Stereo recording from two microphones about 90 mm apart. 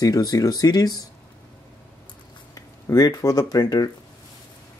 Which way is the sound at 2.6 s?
35° left (ahead or behind).